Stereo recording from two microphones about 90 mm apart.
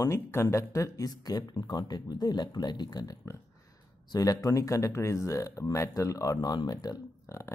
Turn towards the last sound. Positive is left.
turn(degrees=35)  # may be behind; listen again after turning